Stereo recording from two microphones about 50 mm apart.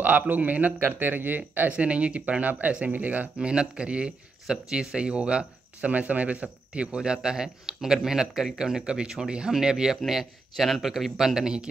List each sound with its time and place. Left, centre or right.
0.0 s speech: right
0.7 s speech: right
3.3 s speech: centre